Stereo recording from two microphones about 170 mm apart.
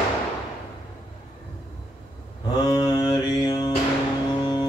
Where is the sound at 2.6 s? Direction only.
25° left (ahead or behind).